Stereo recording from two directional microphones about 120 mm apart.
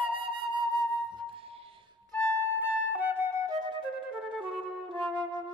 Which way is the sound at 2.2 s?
25° right (ahead or behind).